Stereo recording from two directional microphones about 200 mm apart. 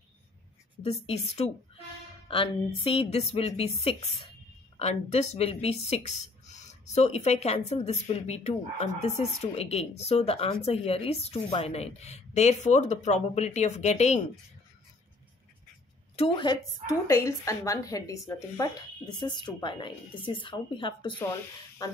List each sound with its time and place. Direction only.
0.8 s speech: 30° left (ahead or behind)
16.2 s speech: 25° left (ahead or behind)